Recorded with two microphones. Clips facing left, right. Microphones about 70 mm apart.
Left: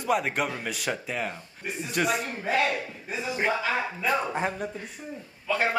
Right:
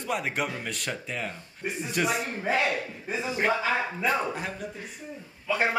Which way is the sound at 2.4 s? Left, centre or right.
Centre.